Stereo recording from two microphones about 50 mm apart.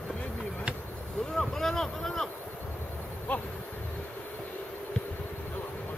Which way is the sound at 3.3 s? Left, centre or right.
Left.